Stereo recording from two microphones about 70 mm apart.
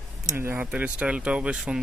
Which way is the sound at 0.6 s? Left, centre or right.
Right.